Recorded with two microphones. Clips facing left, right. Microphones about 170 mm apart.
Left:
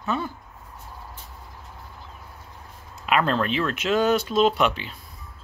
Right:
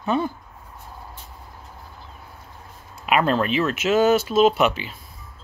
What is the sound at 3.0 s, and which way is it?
Speech, 10° right (ahead or behind).